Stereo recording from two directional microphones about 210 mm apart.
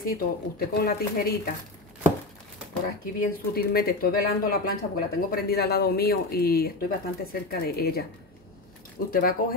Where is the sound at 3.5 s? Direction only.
45° left (ahead or behind).